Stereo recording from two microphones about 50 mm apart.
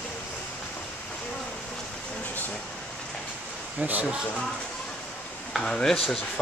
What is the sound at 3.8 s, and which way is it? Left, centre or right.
Speech, right.